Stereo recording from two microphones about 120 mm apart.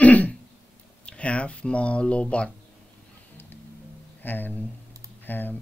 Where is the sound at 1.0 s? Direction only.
10° left (ahead or behind).